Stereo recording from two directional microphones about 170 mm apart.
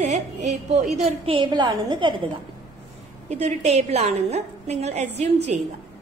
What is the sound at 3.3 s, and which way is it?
A woman's voice, 40° right (ahead or behind).